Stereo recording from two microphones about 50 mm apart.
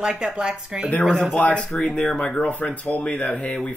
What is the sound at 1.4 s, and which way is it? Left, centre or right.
Speech, left.